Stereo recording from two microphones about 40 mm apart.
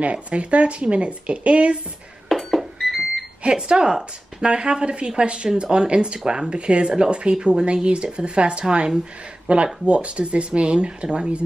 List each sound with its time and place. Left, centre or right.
0.0 s speech: right
2.2 s beep: centre
3.4 s speech: right
9.5 s speech: right